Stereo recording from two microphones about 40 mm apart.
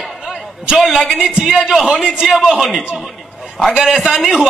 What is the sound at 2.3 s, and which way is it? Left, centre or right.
Speech, centre.